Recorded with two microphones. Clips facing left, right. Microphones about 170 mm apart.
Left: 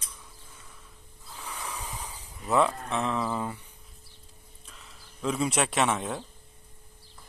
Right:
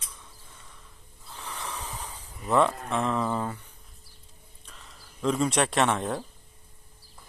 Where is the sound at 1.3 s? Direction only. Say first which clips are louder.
Right 1 dB; 10° left (ahead or behind).